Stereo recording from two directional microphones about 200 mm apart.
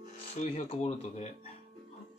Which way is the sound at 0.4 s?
35° left (ahead or behind).